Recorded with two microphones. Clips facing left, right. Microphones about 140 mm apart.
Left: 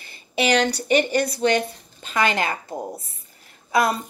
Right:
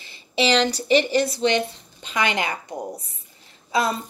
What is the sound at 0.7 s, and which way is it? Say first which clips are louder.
Speech: right 1 dB; 50° left (ahead or behind).